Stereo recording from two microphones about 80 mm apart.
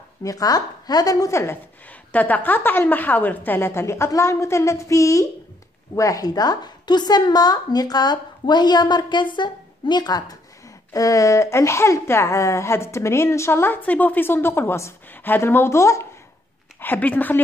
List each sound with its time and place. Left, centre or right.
0.2 s speech: left
2.1 s a woman's voice: left
10.9 s speech: left
16.8 s a woman's voice: left